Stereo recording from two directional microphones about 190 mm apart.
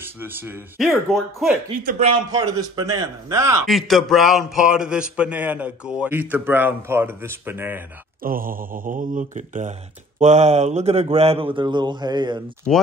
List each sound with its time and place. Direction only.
0.0 s a sound: 10° right (ahead or behind)
0.7 s speech: centre (ahead or behind)
2.0 s speech: 30° right (ahead or behind)
2.3 s a man's voice: 20° right (ahead or behind)
3.6 s a man's voice: centre (ahead or behind)
8.2 s speech: 50° right (ahead or behind); by 12.4 s 20° right (ahead or behind)
12.7 s speech: centre (ahead or behind)